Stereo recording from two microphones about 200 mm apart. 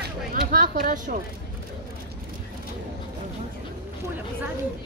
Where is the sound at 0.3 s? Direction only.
45° right (ahead or behind).